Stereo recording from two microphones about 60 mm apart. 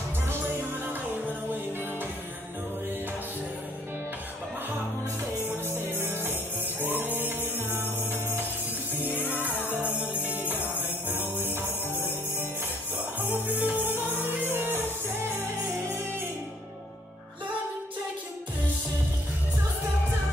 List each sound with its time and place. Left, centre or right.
0.8 s music: right
5.7 s music: right
9.7 s music: right
10.8 s jingle bell: right
13.5 s music: right